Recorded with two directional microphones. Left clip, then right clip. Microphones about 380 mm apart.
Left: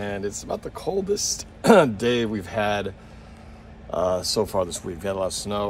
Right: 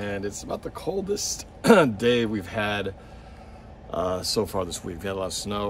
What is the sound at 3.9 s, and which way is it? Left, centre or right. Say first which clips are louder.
Speech: left 3 dB; centre.